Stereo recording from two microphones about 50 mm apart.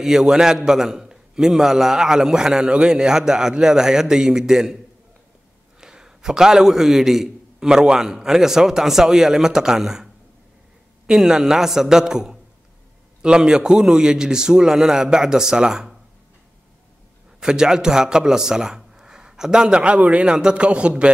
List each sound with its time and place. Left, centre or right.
0.0 s a man's voice: centre
5.8 s a man's voice: centre
11.1 s a man's voice: centre
17.4 s a man's voice: centre